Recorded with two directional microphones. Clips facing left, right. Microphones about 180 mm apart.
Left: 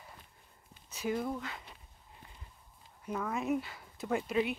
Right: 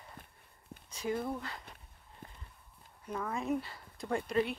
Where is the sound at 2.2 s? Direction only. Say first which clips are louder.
Right 7 dB; 55° right (ahead or behind).